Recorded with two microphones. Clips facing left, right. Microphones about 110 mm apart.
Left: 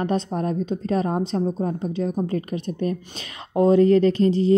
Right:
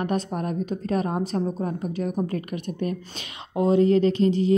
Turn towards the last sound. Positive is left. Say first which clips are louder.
# left 2 dB
turn(degrees=35)  # may be behind; listen again after turning